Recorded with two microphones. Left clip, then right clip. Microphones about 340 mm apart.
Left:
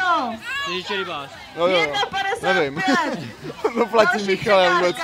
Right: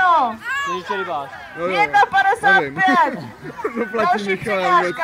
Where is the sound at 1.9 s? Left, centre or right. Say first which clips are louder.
Right 8 dB; centre.